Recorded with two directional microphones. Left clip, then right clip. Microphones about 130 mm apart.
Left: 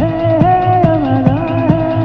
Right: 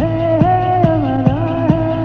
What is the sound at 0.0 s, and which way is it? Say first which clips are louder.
Music: left 2 dB; 30° left (ahead or behind).